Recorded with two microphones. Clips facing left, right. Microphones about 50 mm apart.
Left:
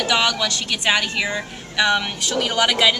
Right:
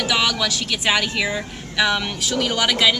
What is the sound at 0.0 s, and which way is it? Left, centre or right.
A woman's voice, centre.